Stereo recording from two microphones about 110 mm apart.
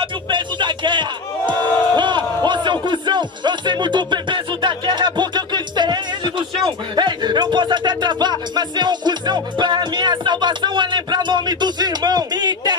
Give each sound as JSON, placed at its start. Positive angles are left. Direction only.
{"t": 0.0, "sound": "speech", "side_deg": -45}
{"t": 2.0, "sound": "music", "side_deg": -45}
{"t": 6.6, "sound": "speech", "side_deg": -45}